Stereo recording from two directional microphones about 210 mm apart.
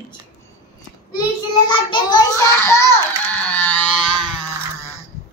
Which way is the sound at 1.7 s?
20° left (ahead or behind).